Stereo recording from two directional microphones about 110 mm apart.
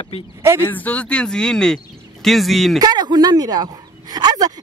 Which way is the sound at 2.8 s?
40° right (ahead or behind).